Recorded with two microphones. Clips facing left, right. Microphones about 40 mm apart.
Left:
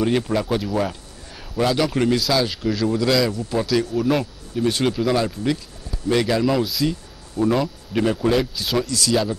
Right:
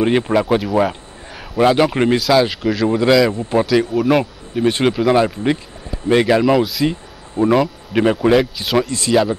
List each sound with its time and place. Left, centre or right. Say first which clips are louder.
0.0 s speech: right 5 dB; right
0.7 s a sound: right 7 dB; right
2.6 s speech: right 4 dB; centre
2.9 s speech: right 7 dB; right
3.9 s speech: right 5 dB; centre
4.2 s speech: right 5 dB; right
6.8 s a sound: right 4 dB; right
7.9 s a man's voice: right 6 dB; right